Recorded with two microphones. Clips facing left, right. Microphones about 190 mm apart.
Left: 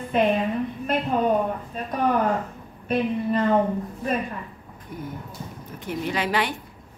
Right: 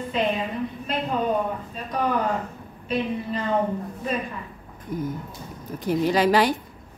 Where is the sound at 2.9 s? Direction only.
55° left (ahead or behind).